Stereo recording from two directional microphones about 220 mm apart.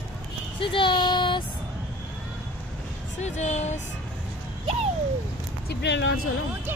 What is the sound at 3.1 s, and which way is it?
Speech, 30° left (ahead or behind).